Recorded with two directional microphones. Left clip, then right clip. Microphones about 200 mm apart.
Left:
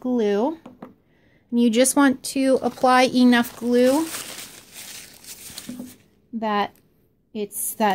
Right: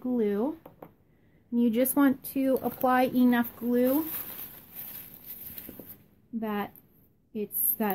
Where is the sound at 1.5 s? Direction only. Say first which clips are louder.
Left 8 dB; 40° left (ahead or behind).